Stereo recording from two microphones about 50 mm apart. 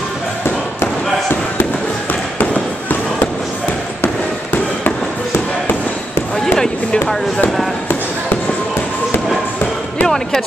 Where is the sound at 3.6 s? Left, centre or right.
Left.